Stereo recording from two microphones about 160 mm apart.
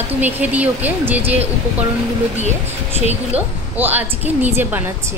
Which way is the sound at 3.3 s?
10° right (ahead or behind).